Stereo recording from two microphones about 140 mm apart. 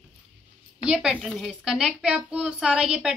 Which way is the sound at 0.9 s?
5° right (ahead or behind).